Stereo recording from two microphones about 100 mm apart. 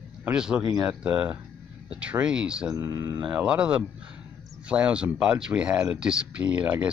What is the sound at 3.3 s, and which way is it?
Speech, 10° right (ahead or behind).